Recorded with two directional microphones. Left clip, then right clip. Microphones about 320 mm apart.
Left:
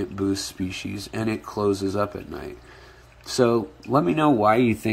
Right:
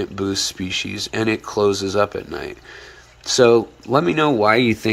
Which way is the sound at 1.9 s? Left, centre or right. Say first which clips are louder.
Right 7 dB; right.